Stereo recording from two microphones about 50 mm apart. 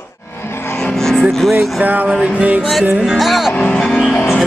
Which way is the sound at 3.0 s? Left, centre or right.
Centre.